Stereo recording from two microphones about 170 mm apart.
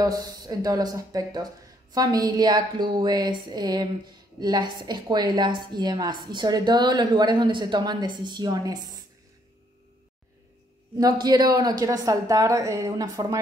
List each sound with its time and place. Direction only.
0.0 s a woman's voice: 20° right (ahead or behind)
11.0 s a woman's voice: 25° right (ahead or behind)